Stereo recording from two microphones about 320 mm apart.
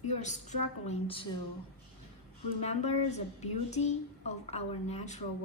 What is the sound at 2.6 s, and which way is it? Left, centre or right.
A woman's voice, centre.